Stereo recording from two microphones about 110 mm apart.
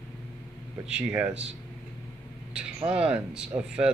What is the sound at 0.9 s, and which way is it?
Speech, 10° right (ahead or behind).